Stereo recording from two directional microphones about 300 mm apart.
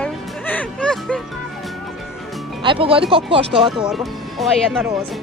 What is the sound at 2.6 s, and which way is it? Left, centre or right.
Speech, centre.